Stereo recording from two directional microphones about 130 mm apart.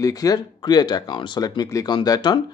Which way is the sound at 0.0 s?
30° left (ahead or behind).